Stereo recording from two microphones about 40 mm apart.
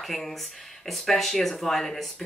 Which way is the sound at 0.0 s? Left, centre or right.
Centre.